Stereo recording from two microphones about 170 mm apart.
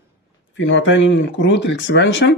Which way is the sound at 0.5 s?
90° left.